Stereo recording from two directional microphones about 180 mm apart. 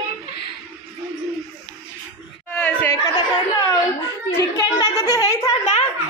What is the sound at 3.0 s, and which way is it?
Chatter, 20° left (ahead or behind).